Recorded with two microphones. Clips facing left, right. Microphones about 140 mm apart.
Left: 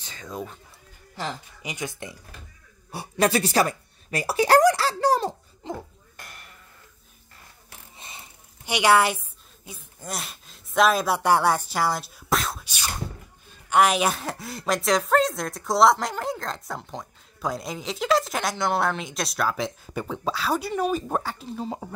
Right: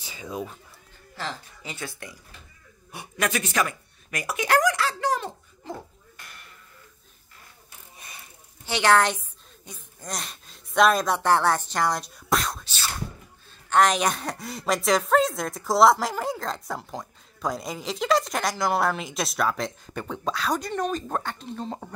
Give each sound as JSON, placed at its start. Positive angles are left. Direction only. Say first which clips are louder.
{"t": 0.0, "sound": "speech", "louder": "right 1 dB", "side_deg": -10}
{"t": 1.1, "sound": "speech", "louder": "left 2 dB", "side_deg": 15}
{"t": 2.9, "sound": "speech", "louder": "left 6 dB", "side_deg": 35}
{"t": 5.6, "sound": "speech", "louder": "left 3 dB", "side_deg": 20}
{"t": 8.0, "sound": "a sound", "louder": "left 2 dB", "side_deg": 25}
{"t": 8.7, "sound": "a woman's voice", "louder": "left 1 dB", "side_deg": 10}
{"t": 12.6, "sound": "a sound", "louder": "even", "side_deg": 15}
{"t": 13.5, "sound": "speech", "louder": "left 1 dB", "side_deg": 10}